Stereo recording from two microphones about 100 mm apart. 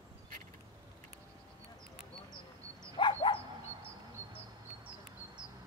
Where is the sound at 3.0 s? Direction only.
50° left (ahead or behind).